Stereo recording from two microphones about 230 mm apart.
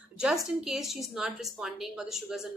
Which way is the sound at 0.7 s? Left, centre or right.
Centre.